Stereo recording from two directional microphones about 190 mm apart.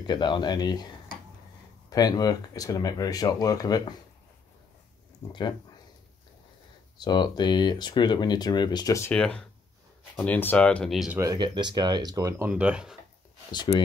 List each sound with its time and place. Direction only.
0.0 s speech: 25° left (ahead or behind)
1.9 s speech: 20° left (ahead or behind)
5.2 s speech: 15° left (ahead or behind)
7.0 s speech: 20° left (ahead or behind)
9.1 s speech: 5° left (ahead or behind)
11.1 s speech: 20° right (ahead or behind)
13.7 s speech: 35° left (ahead or behind)